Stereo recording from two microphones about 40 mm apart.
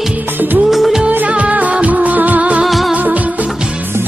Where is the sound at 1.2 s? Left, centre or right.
Right.